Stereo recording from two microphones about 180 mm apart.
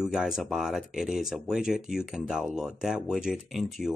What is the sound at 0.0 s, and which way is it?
Speech, 5° right (ahead or behind).